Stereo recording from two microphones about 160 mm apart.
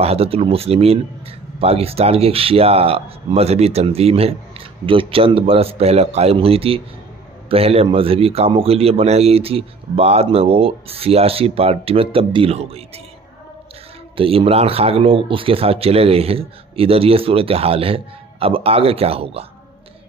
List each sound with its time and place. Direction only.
0.0 s a man's voice: 40° right (ahead or behind)
14.1 s a man's voice: 35° right (ahead or behind)